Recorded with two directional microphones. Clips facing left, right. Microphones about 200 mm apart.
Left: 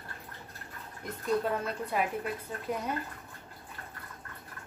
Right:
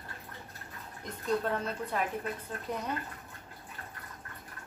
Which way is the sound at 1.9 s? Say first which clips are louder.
Left 3 dB; 10° left (ahead or behind).